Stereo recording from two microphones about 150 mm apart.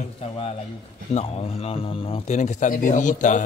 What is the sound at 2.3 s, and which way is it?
Speech, 55° left (ahead or behind).